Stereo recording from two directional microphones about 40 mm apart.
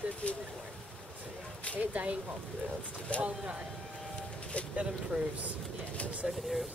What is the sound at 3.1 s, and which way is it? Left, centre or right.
Speech, left.